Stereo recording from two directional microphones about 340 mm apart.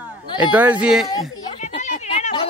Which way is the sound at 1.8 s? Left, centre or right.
Left.